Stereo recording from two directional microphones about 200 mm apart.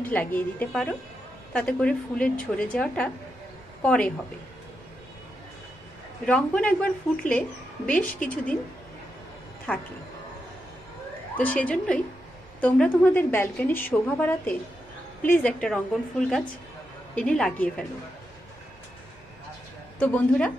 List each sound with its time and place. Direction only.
0.1 s a woman's voice: 10° left (ahead or behind)
6.2 s speech: 5° left (ahead or behind)
9.7 s speech: 10° left (ahead or behind)
11.3 s a woman's voice: 10° left (ahead or behind)
17.1 s a woman's voice: 5° left (ahead or behind)
20.0 s speech: 5° left (ahead or behind)